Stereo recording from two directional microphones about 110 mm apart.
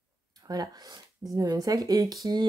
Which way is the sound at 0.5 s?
35° right (ahead or behind).